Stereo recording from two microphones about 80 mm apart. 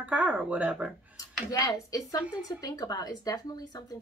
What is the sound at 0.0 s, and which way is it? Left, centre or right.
Speech, centre.